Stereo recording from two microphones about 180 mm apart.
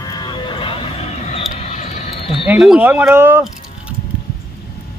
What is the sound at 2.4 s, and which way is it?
A man's voice, 5° right (ahead or behind).